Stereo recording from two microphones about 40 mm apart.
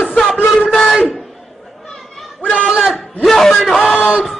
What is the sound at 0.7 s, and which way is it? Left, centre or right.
Speech, centre.